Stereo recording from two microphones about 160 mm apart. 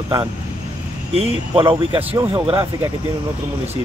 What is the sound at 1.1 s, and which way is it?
Speech, 35° right (ahead or behind).